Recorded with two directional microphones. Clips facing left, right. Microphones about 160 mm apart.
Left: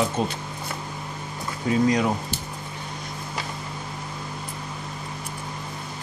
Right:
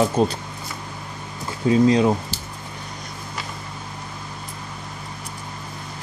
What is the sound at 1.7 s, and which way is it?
Speech, 30° right (ahead or behind).